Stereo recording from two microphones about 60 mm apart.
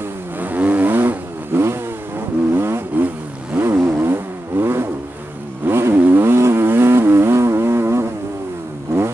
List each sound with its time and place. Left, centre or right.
0.4 s vehicle: right
5.7 s motorcycle: right
5.9 s vehicle: right